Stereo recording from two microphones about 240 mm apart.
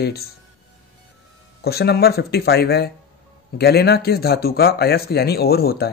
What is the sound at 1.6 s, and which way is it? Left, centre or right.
A man's voice, left.